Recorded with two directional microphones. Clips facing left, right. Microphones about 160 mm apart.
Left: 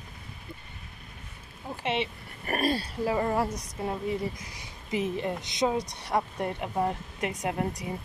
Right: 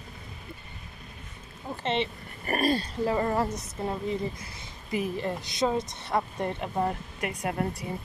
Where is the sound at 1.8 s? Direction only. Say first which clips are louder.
Right 1 dB; 10° left (ahead or behind).